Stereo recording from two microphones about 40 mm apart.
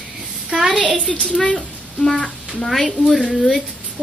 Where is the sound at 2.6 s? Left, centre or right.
Centre.